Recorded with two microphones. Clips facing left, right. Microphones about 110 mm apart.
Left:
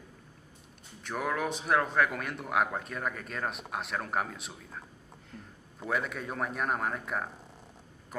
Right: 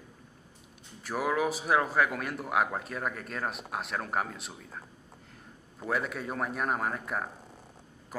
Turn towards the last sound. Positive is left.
turn(degrees=0)  # may be behind; listen again after turning